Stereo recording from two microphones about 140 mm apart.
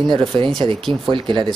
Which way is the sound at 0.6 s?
35° right (ahead or behind).